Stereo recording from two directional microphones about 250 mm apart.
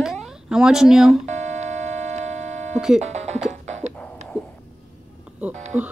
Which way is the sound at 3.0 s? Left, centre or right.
Right.